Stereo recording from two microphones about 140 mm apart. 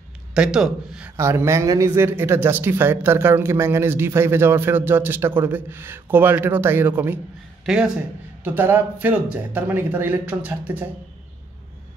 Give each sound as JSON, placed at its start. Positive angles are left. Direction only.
{"t": 0.3, "sound": "speech", "side_deg": -5}
{"t": 1.1, "sound": "speech", "side_deg": -20}
{"t": 8.5, "sound": "speech", "side_deg": -15}